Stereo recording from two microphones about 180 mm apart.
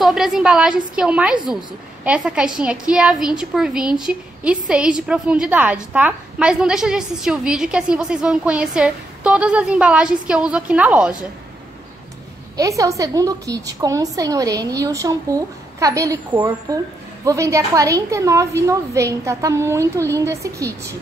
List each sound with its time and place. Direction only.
0.0 s a woman's voice: centre (ahead or behind)
12.5 s a woman's voice: 20° right (ahead or behind)